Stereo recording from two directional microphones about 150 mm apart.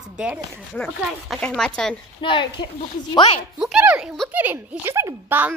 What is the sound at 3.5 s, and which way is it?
Speech, 5° right (ahead or behind).